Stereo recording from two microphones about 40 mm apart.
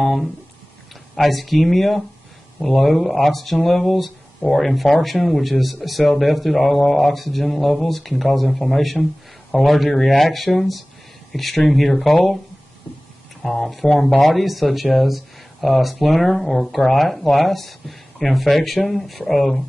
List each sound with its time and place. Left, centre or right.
0.0 s a sound: centre
1.1 s speech: centre
13.4 s speech: centre